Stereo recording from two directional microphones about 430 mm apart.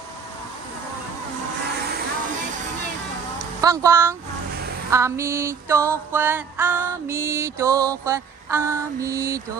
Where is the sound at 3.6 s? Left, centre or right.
Centre.